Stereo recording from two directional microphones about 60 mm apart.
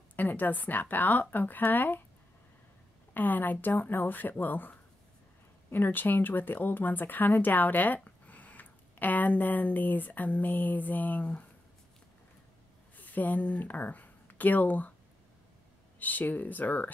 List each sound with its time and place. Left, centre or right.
0.1 s a woman's voice: left
3.2 s a woman's voice: left
12.9 s speech: left
16.0 s speech: left